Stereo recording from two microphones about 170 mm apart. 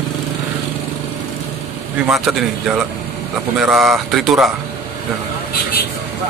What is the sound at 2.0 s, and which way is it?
Speech, 5° right (ahead or behind).